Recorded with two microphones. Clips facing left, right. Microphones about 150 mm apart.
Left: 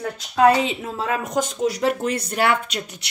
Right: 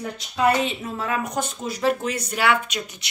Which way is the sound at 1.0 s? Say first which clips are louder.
Left 3 dB; 90° left.